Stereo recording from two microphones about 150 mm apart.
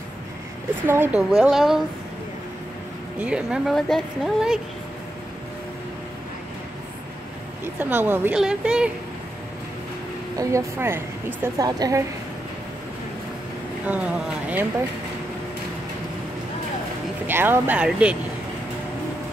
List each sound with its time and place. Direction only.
0.8 s speech: 15° right (ahead or behind)
1.4 s a woman's voice: 5° right (ahead or behind)
3.2 s a woman's voice: 5° right (ahead or behind)
7.6 s a woman's voice: 15° right (ahead or behind)
10.3 s a woman's voice: 20° right (ahead or behind)
13.8 s speech: 10° right (ahead or behind)
17.3 s speech: 15° right (ahead or behind)